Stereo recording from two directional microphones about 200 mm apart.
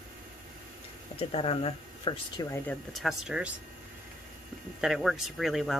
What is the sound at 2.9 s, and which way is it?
Speech, centre (ahead or behind).